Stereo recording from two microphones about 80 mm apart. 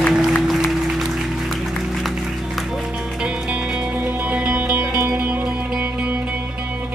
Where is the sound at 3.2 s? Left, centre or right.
Centre.